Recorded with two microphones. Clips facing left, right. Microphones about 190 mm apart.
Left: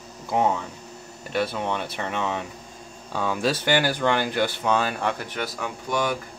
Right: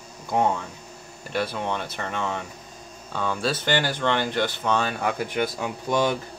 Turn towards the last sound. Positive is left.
turn(degrees=-25)  # may be behind; listen again after turning